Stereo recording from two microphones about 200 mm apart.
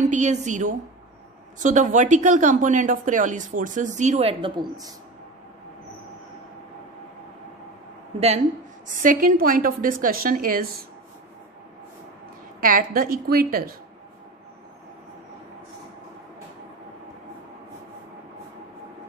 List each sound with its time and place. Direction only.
0.1 s a woman's voice: 35° right (ahead or behind); by 4.9 s 20° right (ahead or behind)
8.8 s a woman's voice: 40° right (ahead or behind)
12.5 s a woman's voice: 45° right (ahead or behind)